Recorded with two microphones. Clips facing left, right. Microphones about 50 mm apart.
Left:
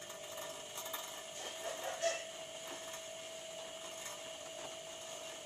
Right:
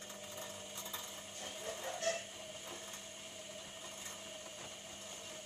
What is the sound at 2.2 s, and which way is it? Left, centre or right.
Printer, centre.